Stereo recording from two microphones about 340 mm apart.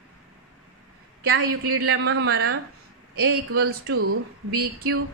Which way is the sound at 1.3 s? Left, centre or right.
Right.